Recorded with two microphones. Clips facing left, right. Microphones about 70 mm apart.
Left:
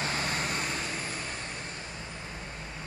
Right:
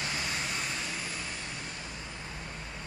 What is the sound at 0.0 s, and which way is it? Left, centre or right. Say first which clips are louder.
Vehicle: left 3 dB; left.